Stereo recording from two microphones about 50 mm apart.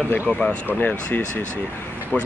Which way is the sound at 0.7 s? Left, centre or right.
Left.